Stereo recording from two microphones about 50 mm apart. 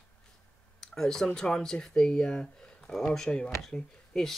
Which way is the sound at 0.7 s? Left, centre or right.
Centre.